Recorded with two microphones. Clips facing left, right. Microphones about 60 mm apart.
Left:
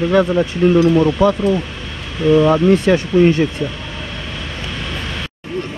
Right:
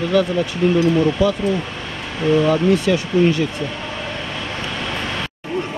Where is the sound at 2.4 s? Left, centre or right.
Left.